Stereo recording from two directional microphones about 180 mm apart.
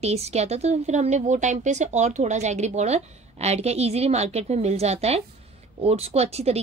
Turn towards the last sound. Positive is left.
turn(degrees=-35)  # may be behind; listen again after turning